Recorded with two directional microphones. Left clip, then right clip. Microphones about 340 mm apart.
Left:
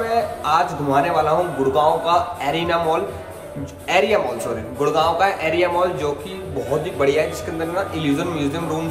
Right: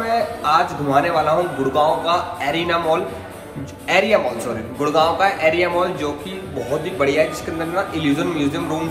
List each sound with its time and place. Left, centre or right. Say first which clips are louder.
0.0 s a man's voice: right 1 dB; centre